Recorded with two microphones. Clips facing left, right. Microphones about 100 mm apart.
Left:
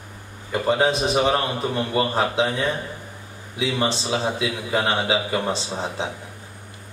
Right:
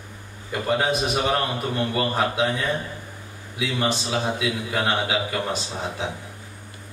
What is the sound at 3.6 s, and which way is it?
A man's voice, 25° left (ahead or behind).